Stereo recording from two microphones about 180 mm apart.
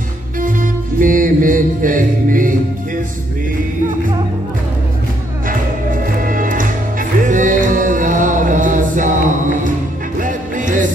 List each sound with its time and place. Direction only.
0.4 s music: 50° right (ahead or behind)
5.5 s music: 50° right (ahead or behind)